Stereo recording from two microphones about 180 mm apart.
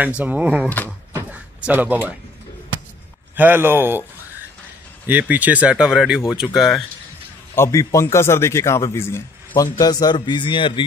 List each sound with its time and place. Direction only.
0.0 s speech: 10° right (ahead or behind)
0.8 s a sound: 10° right (ahead or behind)
3.3 s speech: 10° right (ahead or behind)
5.0 s speech: 10° right (ahead or behind)
7.5 s a man's voice: 15° left (ahead or behind)